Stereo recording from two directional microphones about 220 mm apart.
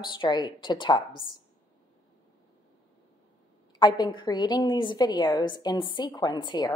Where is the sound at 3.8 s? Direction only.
20° left (ahead or behind).